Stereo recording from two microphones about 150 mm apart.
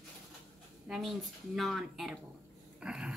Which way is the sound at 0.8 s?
Centre (ahead or behind).